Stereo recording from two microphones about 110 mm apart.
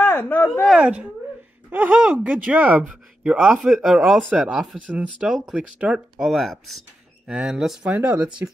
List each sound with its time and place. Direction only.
0.0 s speech: 20° left (ahead or behind)
0.7 s speech: 10° right (ahead or behind)